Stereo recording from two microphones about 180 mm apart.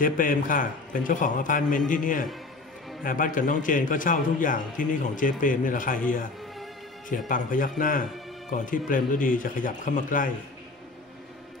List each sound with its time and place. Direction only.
0.0 s a man's voice: 50° left (ahead or behind)